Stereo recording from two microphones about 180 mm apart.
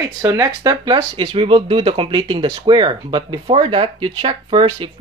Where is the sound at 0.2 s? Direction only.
20° right (ahead or behind).